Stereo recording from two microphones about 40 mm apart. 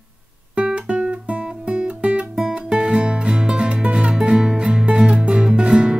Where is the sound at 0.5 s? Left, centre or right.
Right.